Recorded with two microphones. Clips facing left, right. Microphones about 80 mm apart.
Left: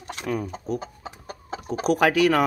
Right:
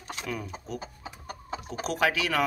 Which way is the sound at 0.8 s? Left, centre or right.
Left.